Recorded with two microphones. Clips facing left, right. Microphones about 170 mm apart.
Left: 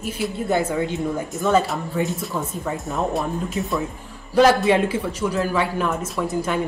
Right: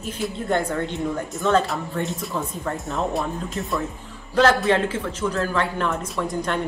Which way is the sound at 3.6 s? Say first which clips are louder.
Left 2 dB; 15° left (ahead or behind).